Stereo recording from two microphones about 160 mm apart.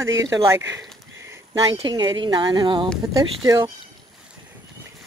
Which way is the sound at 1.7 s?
30° right (ahead or behind).